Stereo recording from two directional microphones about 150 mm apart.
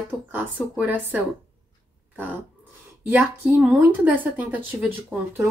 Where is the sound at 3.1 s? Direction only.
10° right (ahead or behind).